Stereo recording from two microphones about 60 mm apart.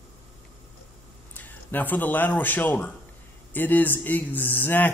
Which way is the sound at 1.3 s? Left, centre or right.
Left.